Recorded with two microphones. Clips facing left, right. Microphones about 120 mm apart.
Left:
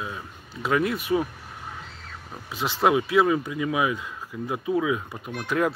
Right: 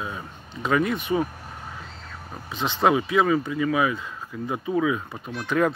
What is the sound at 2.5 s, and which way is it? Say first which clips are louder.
Speech: right 1 dB; 10° left (ahead or behind).